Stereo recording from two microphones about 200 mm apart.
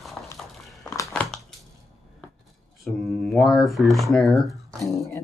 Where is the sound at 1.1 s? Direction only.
5° left (ahead or behind).